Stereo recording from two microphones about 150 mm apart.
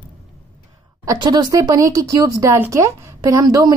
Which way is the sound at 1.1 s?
25° right (ahead or behind).